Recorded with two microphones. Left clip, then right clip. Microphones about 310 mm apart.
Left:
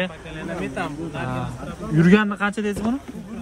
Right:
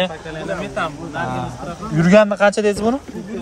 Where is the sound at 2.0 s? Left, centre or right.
Centre.